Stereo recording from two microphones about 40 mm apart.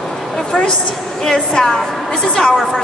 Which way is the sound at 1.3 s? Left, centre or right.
Centre.